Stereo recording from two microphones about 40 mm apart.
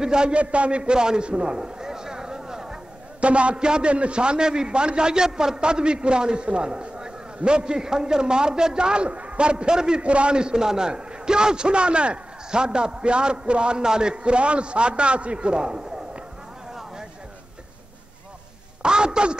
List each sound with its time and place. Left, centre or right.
0.0 s a man's voice: right
0.4 s a sound: right; by 2.8 s centre
3.2 s a man's voice: right
18.8 s a man's voice: right